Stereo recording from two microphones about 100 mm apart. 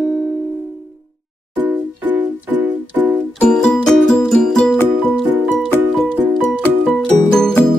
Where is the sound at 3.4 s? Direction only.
10° left (ahead or behind).